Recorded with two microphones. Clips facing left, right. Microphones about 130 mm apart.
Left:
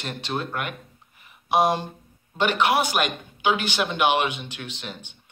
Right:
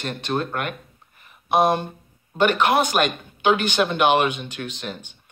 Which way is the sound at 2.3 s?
15° left (ahead or behind).